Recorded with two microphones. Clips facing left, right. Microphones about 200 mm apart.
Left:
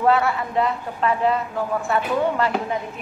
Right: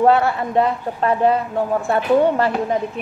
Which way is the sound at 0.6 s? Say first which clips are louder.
Right 5 dB; 45° right (ahead or behind).